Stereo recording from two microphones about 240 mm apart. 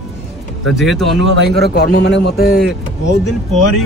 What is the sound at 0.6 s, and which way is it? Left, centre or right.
A man's voice, centre.